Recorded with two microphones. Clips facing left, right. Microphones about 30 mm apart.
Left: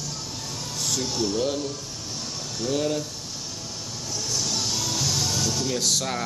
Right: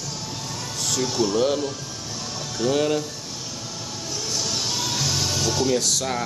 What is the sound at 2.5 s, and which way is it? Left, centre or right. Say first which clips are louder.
Speech: right 5 dB; right.